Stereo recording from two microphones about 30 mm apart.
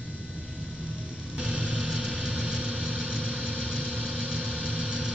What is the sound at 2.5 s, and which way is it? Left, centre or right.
Vehicle, right.